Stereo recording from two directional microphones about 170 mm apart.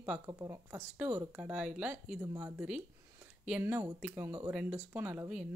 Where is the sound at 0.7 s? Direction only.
10° right (ahead or behind).